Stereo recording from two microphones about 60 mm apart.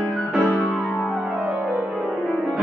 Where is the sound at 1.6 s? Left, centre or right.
Right.